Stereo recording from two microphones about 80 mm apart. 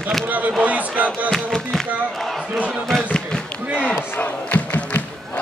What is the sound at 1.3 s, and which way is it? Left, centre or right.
Speech, centre.